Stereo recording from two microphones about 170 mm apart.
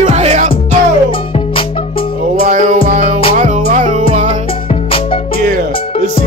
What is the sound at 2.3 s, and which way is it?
Music, 50° right (ahead or behind).